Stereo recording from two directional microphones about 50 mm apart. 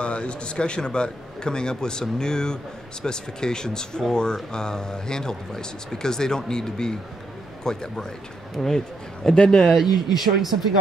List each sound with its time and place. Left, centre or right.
0.0 s a man's voice: left
9.8 s speech: centre